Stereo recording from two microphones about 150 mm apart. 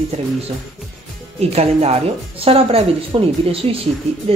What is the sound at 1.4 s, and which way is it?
Speech, 45° right (ahead or behind).